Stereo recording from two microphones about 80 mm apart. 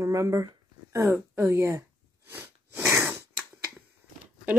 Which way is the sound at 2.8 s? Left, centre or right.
Right.